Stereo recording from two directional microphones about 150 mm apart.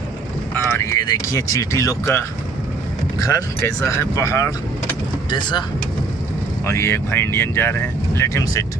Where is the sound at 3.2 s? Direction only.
20° left (ahead or behind).